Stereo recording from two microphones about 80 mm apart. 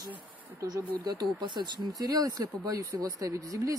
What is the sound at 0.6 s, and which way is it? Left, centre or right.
Speech, right.